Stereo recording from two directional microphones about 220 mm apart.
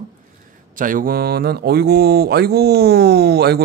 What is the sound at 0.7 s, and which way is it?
Speech, 40° right (ahead or behind).